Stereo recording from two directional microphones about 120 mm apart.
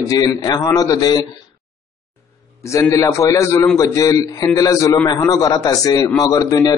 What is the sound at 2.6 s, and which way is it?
A man's voice, 25° left (ahead or behind).